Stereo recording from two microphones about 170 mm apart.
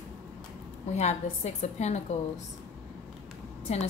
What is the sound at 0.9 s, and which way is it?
A woman's voice, 40° left (ahead or behind).